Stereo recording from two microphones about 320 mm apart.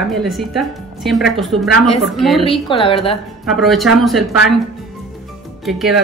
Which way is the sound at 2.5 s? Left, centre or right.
Centre.